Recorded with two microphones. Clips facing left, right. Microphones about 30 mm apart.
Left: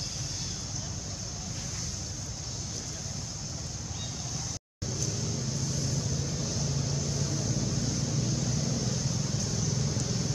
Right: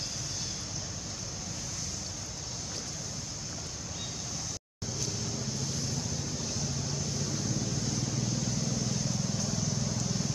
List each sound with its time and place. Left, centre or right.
6.3 s vehicle: centre